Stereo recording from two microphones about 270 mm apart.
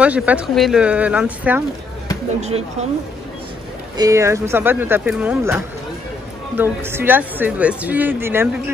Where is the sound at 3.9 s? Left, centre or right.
Centre.